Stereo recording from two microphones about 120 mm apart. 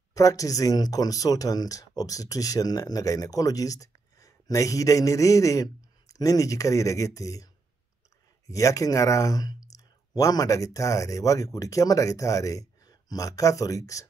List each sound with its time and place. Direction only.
0.1 s speech: 30° left (ahead or behind)
8.5 s speech: 25° left (ahead or behind)